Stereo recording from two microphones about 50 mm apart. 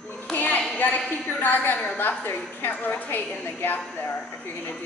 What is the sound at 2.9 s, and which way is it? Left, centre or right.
A woman's voice, left.